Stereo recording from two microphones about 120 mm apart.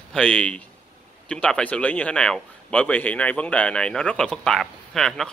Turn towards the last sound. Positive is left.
turn(degrees=5)  # may be behind; listen again after turning